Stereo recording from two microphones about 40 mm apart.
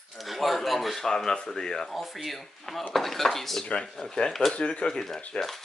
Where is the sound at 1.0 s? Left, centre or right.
Centre.